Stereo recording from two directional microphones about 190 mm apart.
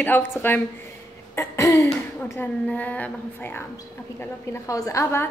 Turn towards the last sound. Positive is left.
turn(degrees=15)  # may be behind; listen again after turning